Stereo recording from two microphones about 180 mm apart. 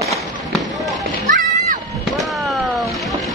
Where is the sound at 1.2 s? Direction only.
45° right (ahead or behind).